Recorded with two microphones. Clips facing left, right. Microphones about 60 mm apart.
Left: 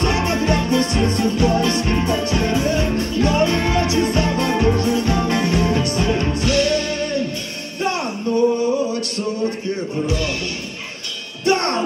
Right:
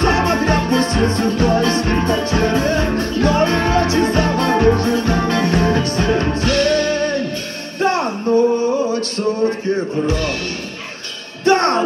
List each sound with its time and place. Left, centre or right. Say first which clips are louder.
0.0 s music: right 4 dB; right
11.4 s music: right 4 dB; right